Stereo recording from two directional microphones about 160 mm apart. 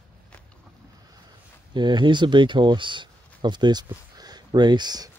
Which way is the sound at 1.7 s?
25° right (ahead or behind).